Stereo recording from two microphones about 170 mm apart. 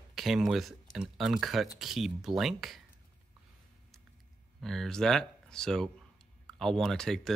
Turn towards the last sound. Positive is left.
turn(degrees=5)  # may be behind; listen again after turning